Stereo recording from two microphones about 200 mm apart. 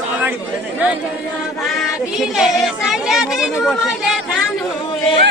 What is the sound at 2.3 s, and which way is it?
Speech, centre (ahead or behind).